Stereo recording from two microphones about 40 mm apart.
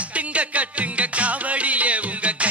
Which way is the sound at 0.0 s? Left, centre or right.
Right.